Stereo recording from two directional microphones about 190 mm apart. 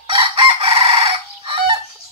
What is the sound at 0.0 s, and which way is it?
Chicken, 25° right (ahead or behind).